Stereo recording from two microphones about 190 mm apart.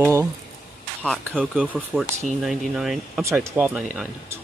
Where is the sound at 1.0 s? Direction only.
5° left (ahead or behind).